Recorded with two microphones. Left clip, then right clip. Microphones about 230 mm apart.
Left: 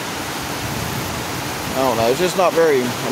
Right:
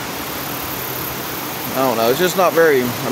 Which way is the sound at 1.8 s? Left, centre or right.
Centre.